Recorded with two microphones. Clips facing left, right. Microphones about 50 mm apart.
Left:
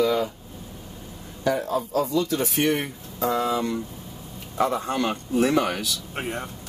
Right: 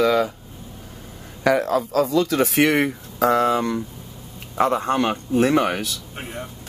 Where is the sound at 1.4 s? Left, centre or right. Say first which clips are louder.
Right 5 dB; right.